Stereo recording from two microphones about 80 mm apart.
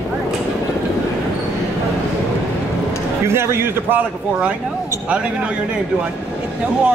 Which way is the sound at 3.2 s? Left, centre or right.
Right.